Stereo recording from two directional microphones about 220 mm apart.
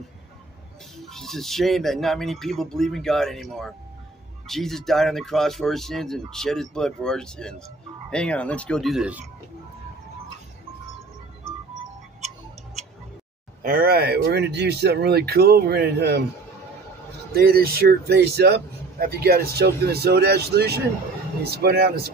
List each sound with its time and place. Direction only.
0.9 s speech: centre (ahead or behind)
13.6 s speech: 40° right (ahead or behind)
17.3 s speech: 45° right (ahead or behind)